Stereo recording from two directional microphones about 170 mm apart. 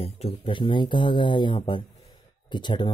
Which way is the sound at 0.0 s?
35° left (ahead or behind).